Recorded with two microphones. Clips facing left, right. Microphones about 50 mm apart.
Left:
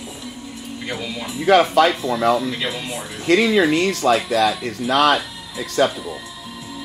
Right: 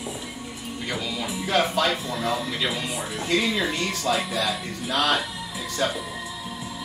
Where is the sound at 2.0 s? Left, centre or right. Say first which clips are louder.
Left 9 dB; left.